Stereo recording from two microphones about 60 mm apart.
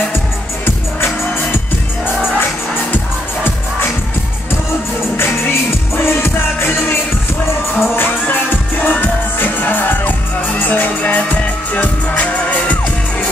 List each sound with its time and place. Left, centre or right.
6.0 s music: left
7.8 s music: left